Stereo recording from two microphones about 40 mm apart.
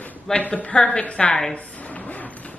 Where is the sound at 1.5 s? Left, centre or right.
Left.